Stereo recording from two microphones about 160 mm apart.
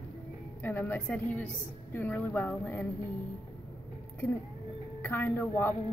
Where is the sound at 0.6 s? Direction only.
10° left (ahead or behind).